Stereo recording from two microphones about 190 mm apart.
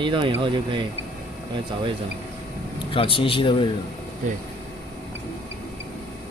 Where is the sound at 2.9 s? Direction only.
30° left (ahead or behind).